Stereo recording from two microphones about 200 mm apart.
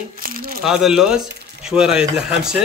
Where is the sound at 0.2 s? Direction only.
45° right (ahead or behind).